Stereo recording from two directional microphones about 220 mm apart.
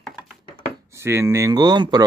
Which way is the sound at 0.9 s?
10° right (ahead or behind).